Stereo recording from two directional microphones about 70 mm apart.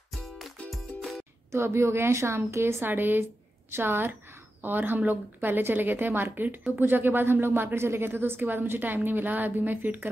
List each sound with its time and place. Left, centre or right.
0.1 s music: centre
1.5 s a woman's voice: right